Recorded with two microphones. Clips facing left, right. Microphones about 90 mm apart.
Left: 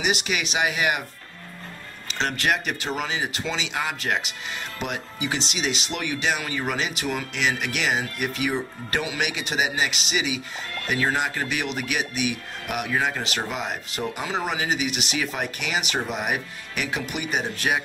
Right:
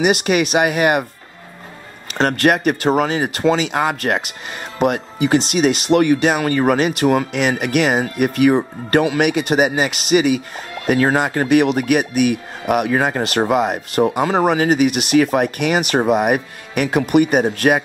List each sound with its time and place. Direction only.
0.0 s speech: 50° right (ahead or behind)
2.1 s speech: 50° right (ahead or behind)